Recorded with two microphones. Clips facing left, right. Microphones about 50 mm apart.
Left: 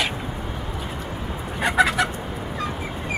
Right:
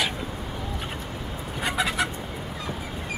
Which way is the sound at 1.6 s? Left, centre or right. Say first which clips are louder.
Left 7 dB; left.